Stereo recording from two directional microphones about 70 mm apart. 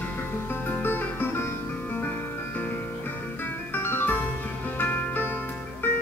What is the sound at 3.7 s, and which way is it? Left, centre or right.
Music, left.